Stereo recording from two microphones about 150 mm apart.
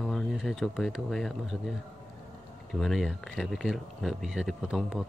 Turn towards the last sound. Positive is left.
turn(degrees=0)  # may be behind; listen again after turning